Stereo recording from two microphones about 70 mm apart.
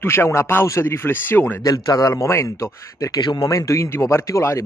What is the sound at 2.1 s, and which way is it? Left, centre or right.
Speech, left.